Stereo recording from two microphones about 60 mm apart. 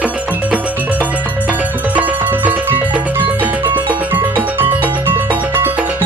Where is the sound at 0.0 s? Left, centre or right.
Right.